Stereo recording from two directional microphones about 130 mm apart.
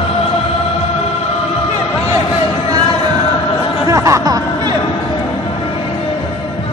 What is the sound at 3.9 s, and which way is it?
Chatter, 25° right (ahead or behind).